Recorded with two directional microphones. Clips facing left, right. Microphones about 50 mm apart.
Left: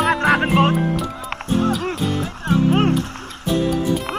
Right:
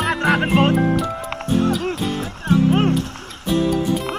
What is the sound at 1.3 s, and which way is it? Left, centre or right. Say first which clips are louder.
Music: left 1 dB; left.